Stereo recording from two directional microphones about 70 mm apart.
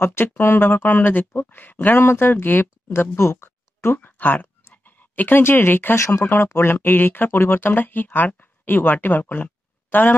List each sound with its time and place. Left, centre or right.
0.0 s speech: left
5.9 s speech: left
6.2 s speech: left